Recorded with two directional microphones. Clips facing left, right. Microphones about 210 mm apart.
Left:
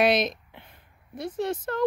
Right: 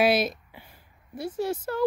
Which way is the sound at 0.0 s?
5° right (ahead or behind).